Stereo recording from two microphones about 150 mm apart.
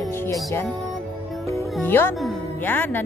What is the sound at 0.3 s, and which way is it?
Music, 20° left (ahead or behind).